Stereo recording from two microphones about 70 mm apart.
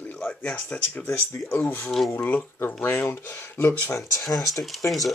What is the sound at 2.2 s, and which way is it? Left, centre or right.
Speech, left.